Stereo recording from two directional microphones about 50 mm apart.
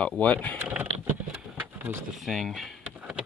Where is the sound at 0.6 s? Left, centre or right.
Right.